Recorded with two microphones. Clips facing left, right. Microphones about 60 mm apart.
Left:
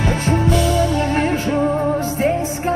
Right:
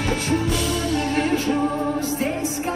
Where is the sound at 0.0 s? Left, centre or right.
Left.